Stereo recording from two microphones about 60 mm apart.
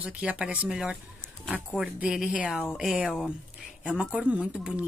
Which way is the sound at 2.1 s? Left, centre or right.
Centre.